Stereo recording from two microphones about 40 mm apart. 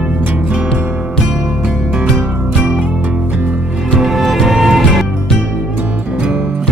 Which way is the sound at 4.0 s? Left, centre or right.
Centre.